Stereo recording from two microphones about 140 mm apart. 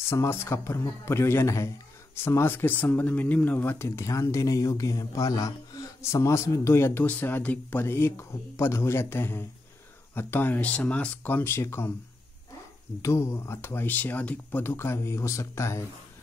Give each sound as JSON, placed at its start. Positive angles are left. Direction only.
{"t": 0.1, "sound": "speech", "side_deg": 20}
{"t": 13.0, "sound": "speech", "side_deg": 20}